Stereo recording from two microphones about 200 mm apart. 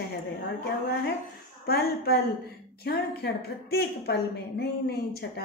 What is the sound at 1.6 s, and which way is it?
A woman's voice, 50° left (ahead or behind).